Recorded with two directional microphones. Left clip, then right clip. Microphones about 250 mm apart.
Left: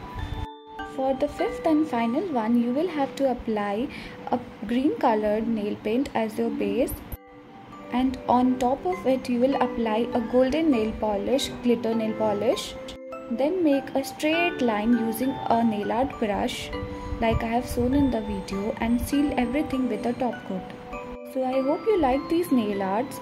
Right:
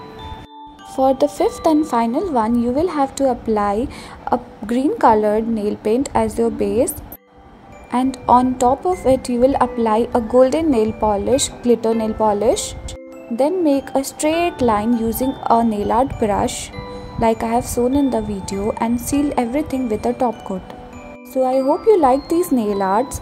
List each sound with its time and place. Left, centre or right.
0.9 s a woman's voice: right
7.9 s a woman's voice: centre
21.4 s a woman's voice: centre